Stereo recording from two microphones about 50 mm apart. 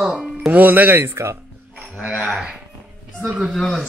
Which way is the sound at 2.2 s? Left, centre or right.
Centre.